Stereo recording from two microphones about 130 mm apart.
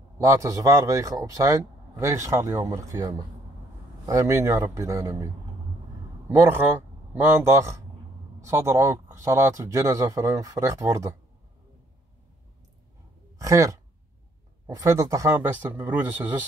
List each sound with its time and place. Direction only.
0.2 s a man's voice: 25° right (ahead or behind)
13.4 s speech: 25° right (ahead or behind)
15.3 s speech: 15° right (ahead or behind)